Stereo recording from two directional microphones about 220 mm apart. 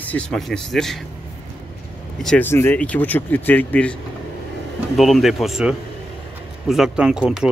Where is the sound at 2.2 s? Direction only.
5° left (ahead or behind).